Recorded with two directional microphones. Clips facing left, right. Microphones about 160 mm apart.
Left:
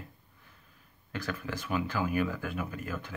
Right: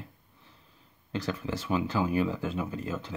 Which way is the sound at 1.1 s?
25° right (ahead or behind).